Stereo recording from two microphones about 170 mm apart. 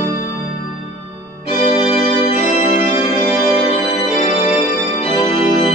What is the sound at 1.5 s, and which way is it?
Organ, 40° left (ahead or behind).